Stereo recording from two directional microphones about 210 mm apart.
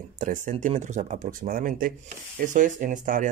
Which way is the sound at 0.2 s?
35° right (ahead or behind).